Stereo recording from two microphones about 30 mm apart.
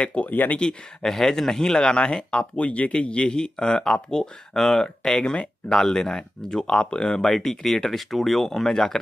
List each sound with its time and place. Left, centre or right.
0.0 s speech: left
1.0 s speech: centre; by 3.3 s left
3.3 s speech: left
4.8 s speech: left
7.6 s speech: centre